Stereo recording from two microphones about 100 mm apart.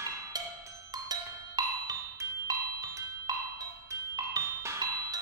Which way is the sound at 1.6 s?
45° right (ahead or behind).